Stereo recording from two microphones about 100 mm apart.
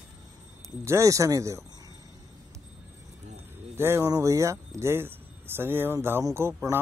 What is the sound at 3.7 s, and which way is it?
Speech, 25° right (ahead or behind).